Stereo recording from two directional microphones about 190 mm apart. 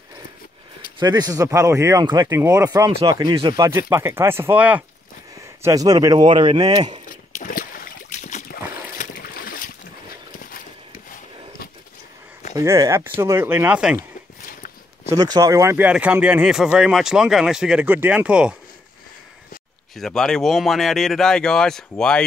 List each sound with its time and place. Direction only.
0.9 s speech: 20° right (ahead or behind)
7.3 s a sound: 45° left (ahead or behind)
10.4 s horse: 45° left (ahead or behind)
12.5 s speech: 15° right (ahead or behind)
15.0 s speech: 20° right (ahead or behind)
20.0 s speech: centre (ahead or behind)